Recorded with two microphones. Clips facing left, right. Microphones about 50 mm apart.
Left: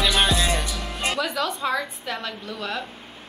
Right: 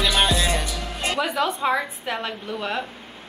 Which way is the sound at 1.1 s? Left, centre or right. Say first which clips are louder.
Right 6 dB; centre.